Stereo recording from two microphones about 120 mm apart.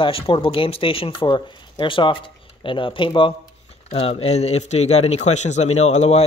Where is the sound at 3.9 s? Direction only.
60° left (ahead or behind).